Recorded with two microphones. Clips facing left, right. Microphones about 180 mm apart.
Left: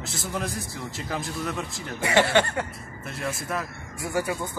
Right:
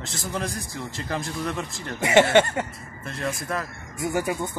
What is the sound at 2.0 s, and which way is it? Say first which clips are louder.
Speech: right 4 dB; 20° right (ahead or behind).